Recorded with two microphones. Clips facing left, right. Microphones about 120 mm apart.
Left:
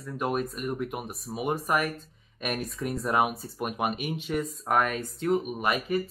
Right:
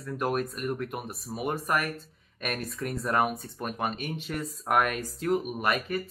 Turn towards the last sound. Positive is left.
turn(degrees=0)  # may be behind; listen again after turning